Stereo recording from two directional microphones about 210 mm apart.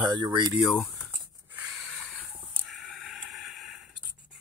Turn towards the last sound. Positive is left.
turn(degrees=0)  # may be behind; listen again after turning